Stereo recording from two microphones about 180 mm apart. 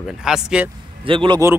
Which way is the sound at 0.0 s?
Centre (ahead or behind).